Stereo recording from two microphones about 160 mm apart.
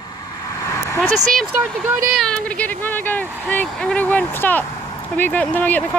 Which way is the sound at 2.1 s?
5° left (ahead or behind).